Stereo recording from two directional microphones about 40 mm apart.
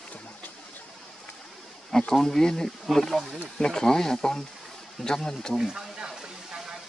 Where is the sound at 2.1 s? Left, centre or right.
Centre.